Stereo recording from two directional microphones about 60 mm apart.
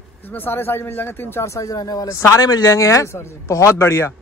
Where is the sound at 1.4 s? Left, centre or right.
Left.